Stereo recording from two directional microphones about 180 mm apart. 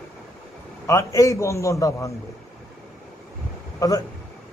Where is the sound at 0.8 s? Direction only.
15° left (ahead or behind).